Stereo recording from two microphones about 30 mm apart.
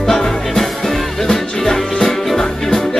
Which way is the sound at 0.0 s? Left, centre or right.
Centre.